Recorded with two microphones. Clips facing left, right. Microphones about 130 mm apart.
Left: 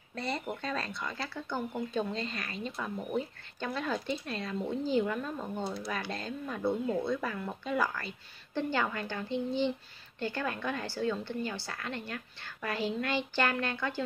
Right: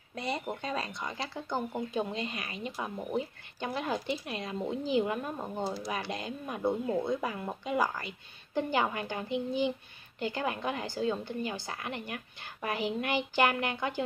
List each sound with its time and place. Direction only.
0.1 s speech: 15° right (ahead or behind)